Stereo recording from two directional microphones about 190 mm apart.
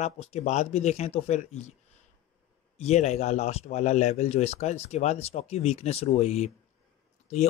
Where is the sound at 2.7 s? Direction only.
35° left (ahead or behind).